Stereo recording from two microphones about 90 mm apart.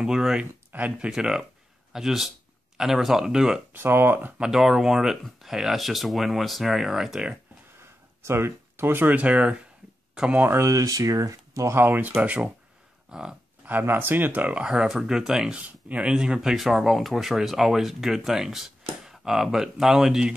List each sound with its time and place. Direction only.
0.0 s speech: 5° right (ahead or behind)
0.7 s speech: 15° right (ahead or behind)
3.7 s speech: 25° right (ahead or behind)
4.4 s speech: 5° right (ahead or behind)
8.2 s speech: 30° right (ahead or behind); by 10.4 s 10° right (ahead or behind)
10.4 s speech: 30° right (ahead or behind); by 13.4 s 10° right (ahead or behind)
13.7 s speech: 20° right (ahead or behind)